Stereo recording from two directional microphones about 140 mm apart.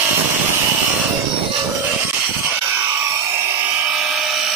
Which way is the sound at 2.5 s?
15° right (ahead or behind).